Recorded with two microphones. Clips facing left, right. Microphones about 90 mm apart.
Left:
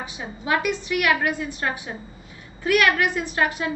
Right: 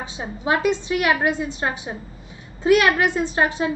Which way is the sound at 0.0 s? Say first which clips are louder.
Right 4 dB; 25° right (ahead or behind).